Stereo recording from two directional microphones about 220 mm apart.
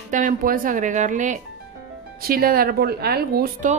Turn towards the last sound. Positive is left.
turn(degrees=-40)  # may be behind; listen again after turning